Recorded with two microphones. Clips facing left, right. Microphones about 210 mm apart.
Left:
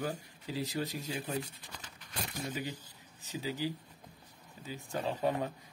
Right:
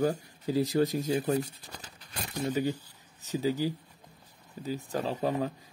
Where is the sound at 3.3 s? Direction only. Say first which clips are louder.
Right 7 dB; 40° right (ahead or behind).